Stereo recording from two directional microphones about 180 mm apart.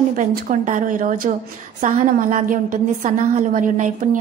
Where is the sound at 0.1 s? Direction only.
45° right (ahead or behind).